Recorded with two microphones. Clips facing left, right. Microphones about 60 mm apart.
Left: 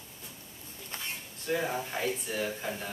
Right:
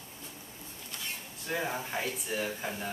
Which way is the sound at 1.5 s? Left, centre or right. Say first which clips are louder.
Left 2 dB; centre.